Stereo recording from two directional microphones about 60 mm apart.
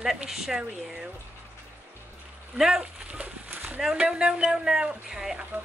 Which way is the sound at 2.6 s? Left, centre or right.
Centre.